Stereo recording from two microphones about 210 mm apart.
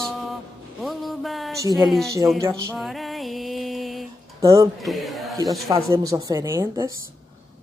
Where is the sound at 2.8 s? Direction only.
Centre (ahead or behind).